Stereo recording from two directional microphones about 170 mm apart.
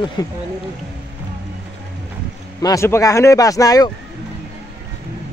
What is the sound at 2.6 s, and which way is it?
Speech, 20° left (ahead or behind).